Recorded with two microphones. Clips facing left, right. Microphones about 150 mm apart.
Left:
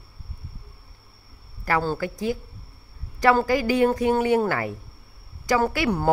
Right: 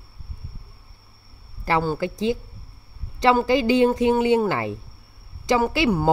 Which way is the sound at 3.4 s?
25° right (ahead or behind).